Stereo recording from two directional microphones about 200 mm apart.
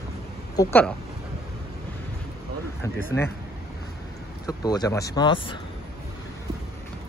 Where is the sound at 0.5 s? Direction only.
15° left (ahead or behind).